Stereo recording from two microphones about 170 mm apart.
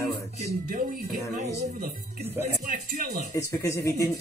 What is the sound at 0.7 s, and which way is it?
Speech, 55° right (ahead or behind).